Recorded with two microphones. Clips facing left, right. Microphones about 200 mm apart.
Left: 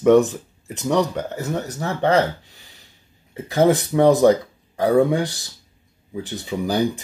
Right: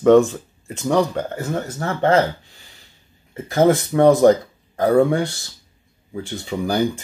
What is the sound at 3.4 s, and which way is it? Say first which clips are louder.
Speech: right 1 dB; 15° left (ahead or behind).